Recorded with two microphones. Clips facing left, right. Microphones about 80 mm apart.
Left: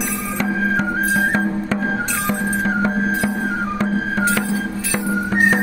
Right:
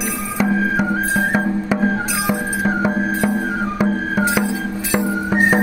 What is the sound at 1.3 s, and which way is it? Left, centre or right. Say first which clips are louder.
Music: right 1 dB; centre.